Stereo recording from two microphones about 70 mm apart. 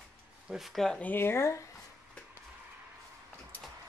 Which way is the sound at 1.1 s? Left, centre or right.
Left.